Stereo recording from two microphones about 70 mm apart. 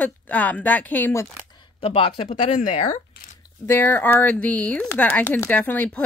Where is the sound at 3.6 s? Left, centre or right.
Left.